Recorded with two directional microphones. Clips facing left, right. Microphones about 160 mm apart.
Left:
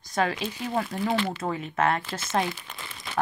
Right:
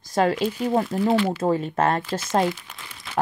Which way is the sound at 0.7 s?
25° right (ahead or behind).